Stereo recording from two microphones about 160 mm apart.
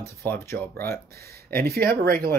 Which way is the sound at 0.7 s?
75° right (ahead or behind).